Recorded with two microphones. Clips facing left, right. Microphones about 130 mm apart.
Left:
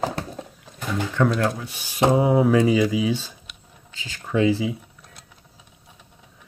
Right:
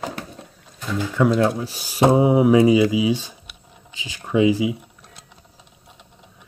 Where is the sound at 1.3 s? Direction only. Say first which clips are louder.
Right 5 dB; 20° right (ahead or behind).